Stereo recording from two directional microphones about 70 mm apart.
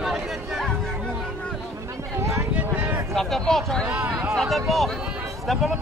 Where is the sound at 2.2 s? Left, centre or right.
Right.